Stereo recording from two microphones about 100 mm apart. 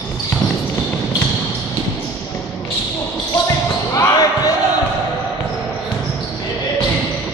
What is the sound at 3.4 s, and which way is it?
Basketball bounce, 35° left (ahead or behind).